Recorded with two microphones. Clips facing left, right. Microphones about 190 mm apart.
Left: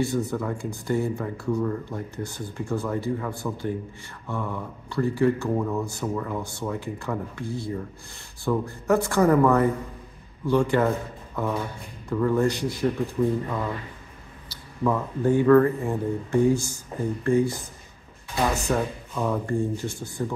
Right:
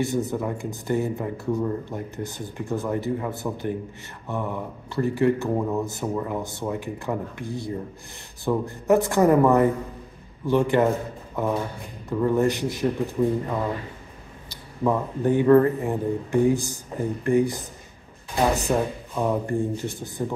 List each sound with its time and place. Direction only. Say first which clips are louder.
0.0 s speech: right 1 dB; 20° right (ahead or behind)
14.5 s speech: right 1 dB; 20° right (ahead or behind)
18.7 s speech: right 2 dB; 15° right (ahead or behind)